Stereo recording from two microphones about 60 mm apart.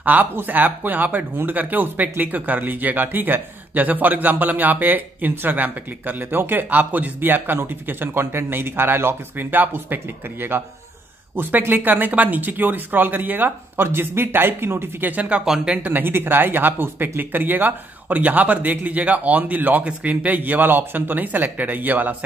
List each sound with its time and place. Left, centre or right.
0.0 s speech: right
15.4 s speech: centre
15.7 s a man's voice: right